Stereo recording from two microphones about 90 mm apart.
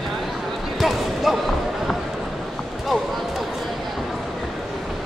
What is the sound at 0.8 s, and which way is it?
Basketball bounce, centre (ahead or behind).